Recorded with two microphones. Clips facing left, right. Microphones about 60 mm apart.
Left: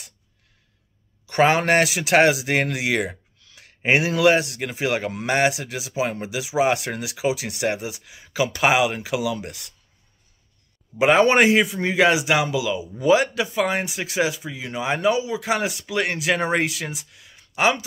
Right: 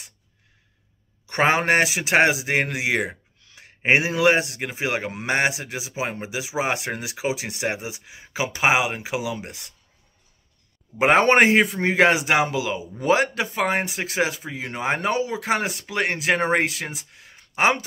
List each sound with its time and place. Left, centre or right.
1.2 s a man's voice: right
11.0 s speech: right